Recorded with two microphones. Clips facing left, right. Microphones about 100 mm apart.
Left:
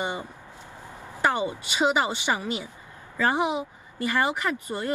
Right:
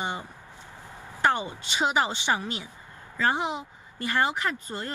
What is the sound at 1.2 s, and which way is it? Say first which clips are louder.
Speech: left 1 dB; 10° left (ahead or behind).